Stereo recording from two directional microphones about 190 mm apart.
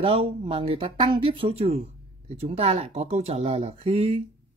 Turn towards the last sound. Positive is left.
turn(degrees=-30)  # may be behind; listen again after turning